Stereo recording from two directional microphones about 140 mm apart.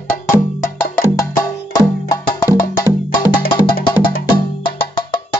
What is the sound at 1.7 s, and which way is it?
Music, 25° left (ahead or behind).